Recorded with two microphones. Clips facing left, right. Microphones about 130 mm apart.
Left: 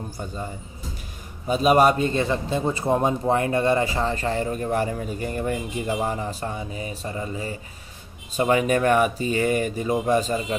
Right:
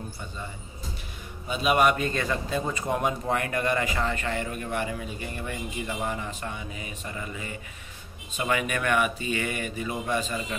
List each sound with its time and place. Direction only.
1.5 s a man's voice: 40° left (ahead or behind)